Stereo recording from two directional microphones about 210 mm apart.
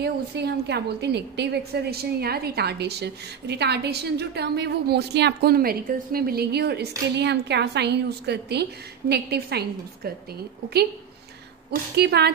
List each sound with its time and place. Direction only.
0.0 s a woman's voice: 55° right (ahead or behind)
12.0 s a woman's voice: 50° right (ahead or behind)